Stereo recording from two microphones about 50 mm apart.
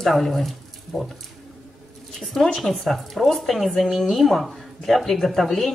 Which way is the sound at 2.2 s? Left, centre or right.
Centre.